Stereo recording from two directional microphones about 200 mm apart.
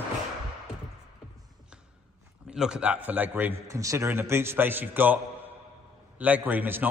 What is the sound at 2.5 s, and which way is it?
A man's voice, 5° right (ahead or behind).